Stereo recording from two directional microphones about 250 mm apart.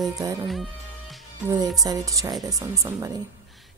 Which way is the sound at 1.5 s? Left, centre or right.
Centre.